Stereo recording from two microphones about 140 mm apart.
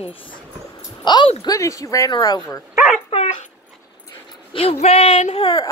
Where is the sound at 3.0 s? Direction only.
50° left (ahead or behind).